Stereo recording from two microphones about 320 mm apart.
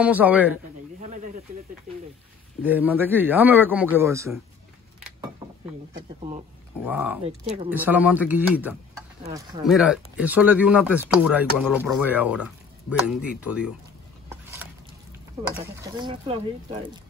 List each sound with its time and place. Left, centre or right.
0.0 s speech: centre
1.0 s snake: right
2.6 s speech: centre
6.9 s speech: centre
7.2 s speech: centre
7.7 s speech: centre
14.3 s a sound: centre
15.6 s speech: centre